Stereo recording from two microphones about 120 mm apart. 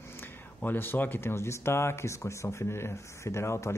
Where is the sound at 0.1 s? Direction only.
20° left (ahead or behind).